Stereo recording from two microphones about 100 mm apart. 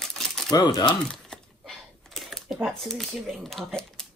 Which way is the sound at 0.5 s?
45° left (ahead or behind).